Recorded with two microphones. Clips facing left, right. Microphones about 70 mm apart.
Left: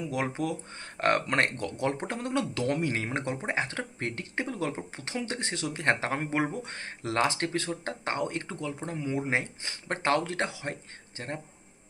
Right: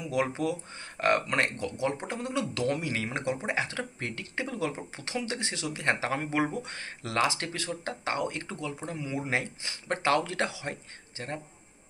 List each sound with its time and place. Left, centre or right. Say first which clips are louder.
0.0 s speech: right 2 dB; left
2.5 s speech: left 1 dB; left